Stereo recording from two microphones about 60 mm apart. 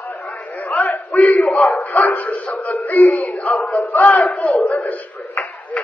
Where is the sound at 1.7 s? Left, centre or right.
Left.